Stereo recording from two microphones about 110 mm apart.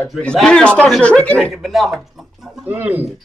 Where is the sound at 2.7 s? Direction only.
15° right (ahead or behind).